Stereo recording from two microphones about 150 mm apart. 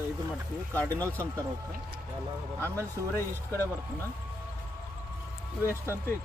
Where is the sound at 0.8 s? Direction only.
10° left (ahead or behind).